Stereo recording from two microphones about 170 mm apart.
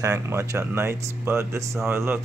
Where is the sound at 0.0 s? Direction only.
15° right (ahead or behind).